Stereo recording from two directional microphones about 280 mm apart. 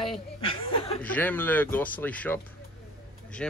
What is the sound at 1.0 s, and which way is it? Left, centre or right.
Speech, centre.